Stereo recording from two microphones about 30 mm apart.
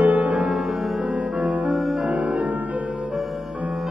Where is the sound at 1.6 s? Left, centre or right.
Centre.